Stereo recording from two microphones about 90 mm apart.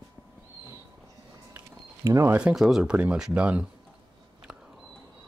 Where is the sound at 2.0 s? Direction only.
30° right (ahead or behind).